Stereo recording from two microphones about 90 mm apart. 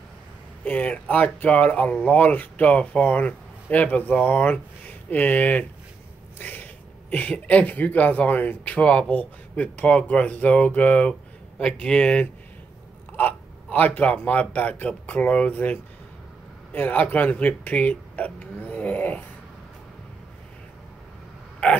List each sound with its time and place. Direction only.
0.7 s speech: 15° left (ahead or behind)